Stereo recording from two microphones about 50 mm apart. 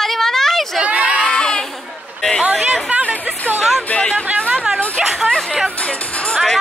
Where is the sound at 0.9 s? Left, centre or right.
Right.